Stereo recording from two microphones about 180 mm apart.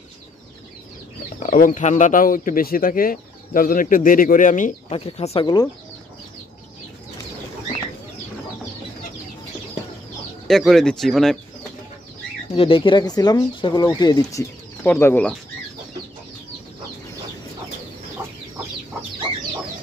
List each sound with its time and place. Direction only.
1.4 s speech: 45° left (ahead or behind)
4.9 s speech: 35° left (ahead or behind)
5.4 s speech: 25° left (ahead or behind)
10.5 s speech: centre (ahead or behind)
12.5 s speech: 30° left (ahead or behind); by 15.3 s 10° left (ahead or behind)